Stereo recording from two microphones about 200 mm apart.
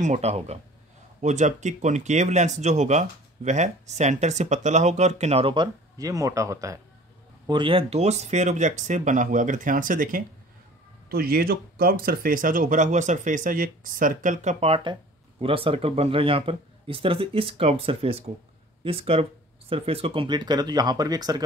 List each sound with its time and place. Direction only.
0.0 s speech: 35° right (ahead or behind)